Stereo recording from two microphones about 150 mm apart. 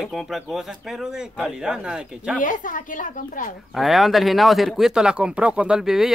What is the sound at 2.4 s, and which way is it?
A woman's voice, 60° left (ahead or behind).